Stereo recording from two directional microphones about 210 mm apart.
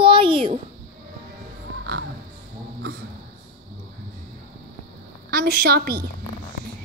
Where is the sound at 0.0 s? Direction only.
25° right (ahead or behind).